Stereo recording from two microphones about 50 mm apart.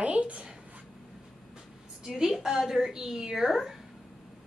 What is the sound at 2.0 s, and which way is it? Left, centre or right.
A woman's voice, centre.